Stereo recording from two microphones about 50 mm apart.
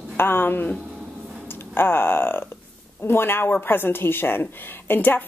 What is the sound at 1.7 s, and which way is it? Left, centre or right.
A woman's voice, left.